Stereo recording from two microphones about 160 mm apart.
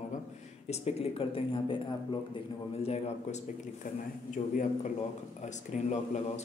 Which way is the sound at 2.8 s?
40° left (ahead or behind).